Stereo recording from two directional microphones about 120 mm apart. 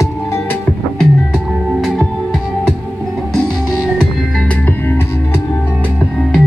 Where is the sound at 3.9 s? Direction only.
10° left (ahead or behind).